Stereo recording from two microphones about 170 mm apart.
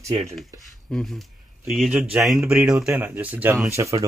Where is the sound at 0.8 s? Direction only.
Centre (ahead or behind).